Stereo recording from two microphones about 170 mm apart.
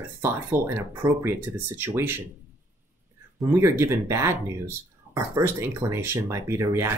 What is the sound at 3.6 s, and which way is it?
Speech, 15° right (ahead or behind).